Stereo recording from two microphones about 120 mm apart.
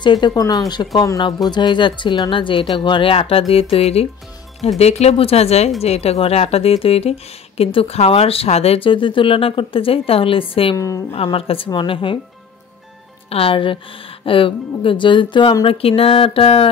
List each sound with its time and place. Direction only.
0.0 s speech: 40° left (ahead or behind)
10.8 s a woman's voice: 30° left (ahead or behind)
11.1 s speech: 50° left (ahead or behind)
13.3 s speech: 50° left (ahead or behind)